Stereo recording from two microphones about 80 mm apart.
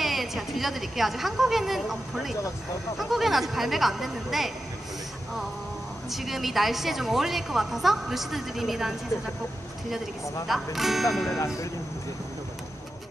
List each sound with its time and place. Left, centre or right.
0.0 s a woman's voice: centre
6.0 s a woman's voice: centre
10.5 s a woman's voice: centre
11.3 s speech: left